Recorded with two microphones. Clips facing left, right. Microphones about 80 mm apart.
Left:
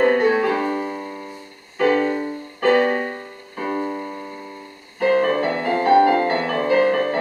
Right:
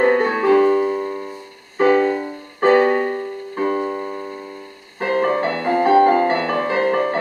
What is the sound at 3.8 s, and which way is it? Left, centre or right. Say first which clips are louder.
Keyboard: right 3 dB; right.